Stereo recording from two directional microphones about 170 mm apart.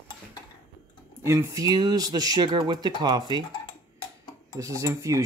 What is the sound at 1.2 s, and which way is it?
Speech, 15° right (ahead or behind).